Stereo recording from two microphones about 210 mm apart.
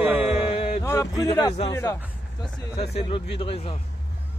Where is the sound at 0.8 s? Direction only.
15° left (ahead or behind).